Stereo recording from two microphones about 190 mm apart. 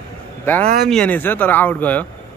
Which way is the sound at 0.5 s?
10° left (ahead or behind).